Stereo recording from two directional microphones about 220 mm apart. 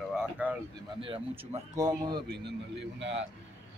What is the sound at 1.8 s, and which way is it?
Speech, 15° right (ahead or behind).